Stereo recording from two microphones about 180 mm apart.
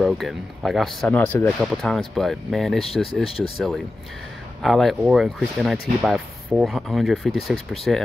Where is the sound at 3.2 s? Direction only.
30° left (ahead or behind).